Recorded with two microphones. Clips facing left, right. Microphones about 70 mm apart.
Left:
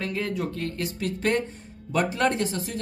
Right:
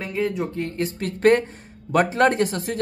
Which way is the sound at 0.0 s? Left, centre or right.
Centre.